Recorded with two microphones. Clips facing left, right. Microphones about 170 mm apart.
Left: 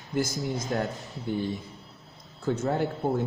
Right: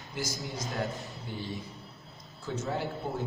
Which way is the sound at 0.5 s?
50° left (ahead or behind).